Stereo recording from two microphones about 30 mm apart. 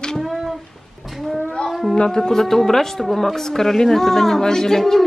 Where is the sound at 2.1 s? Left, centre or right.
Centre.